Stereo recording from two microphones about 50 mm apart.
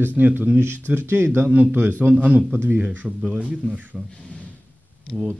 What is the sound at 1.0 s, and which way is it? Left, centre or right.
Speech, right.